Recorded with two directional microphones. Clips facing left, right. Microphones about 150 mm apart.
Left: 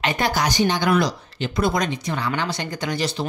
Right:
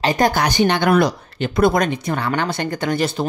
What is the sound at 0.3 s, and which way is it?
Speech, 60° right (ahead or behind).